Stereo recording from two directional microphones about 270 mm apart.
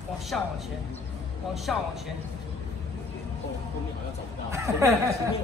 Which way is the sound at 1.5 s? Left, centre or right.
Centre.